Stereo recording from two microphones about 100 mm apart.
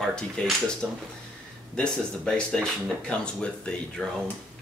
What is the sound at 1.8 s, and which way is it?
Speech, 10° left (ahead or behind).